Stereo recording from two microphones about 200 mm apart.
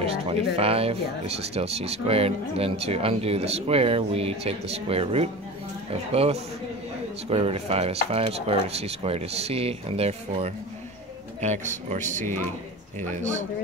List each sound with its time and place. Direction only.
0.0 s speech: 30° right (ahead or behind)